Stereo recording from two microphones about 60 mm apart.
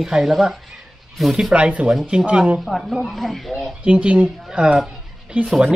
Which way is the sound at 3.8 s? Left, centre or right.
Right.